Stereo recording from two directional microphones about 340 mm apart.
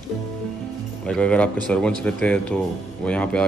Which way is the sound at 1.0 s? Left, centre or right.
Centre.